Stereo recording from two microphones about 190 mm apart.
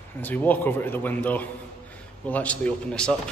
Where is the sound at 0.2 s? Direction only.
10° left (ahead or behind).